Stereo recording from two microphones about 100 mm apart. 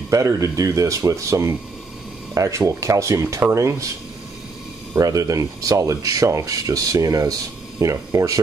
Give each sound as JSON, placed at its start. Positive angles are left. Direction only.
{"t": 0.1, "sound": "speech", "side_deg": -35}
{"t": 4.9, "sound": "speech", "side_deg": -35}